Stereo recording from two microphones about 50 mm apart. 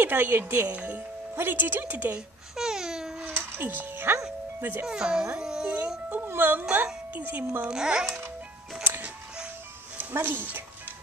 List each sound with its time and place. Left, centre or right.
0.0 s speech: right
0.7 s speech: right
1.3 s speech: right
2.5 s babbling: centre
3.3 s music: right
4.6 s speech: right
4.8 s a child's voice: centre
6.0 s music: right
7.2 s speech: right
7.6 s a child's voice: centre
8.8 s music: right
9.9 s speech: right